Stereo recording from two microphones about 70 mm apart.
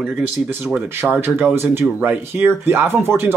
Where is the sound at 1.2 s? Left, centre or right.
Right.